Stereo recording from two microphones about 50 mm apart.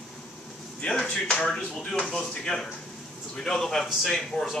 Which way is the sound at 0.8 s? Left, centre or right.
Left.